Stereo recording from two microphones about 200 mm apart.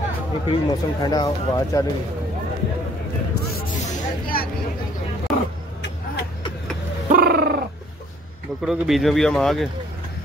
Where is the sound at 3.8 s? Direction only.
45° left (ahead or behind).